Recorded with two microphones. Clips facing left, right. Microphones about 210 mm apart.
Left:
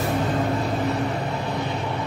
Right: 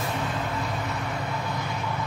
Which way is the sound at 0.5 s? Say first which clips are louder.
Left 7 dB; 35° left (ahead or behind).